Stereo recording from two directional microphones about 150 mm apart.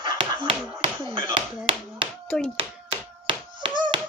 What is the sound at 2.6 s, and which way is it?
Tap, 40° right (ahead or behind).